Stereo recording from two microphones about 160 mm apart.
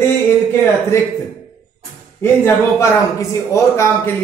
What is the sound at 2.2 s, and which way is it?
A man's voice, 15° left (ahead or behind).